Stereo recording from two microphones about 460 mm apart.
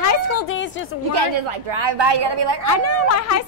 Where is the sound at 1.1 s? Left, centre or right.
Right.